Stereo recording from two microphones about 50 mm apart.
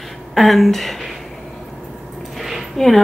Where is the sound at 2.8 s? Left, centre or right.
Centre.